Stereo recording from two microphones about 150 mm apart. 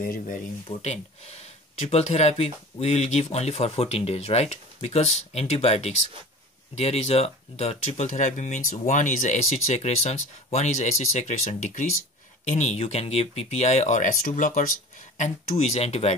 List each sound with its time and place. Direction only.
0.0 s speech: 65° left (ahead or behind)
0.7 s speech: 45° left (ahead or behind)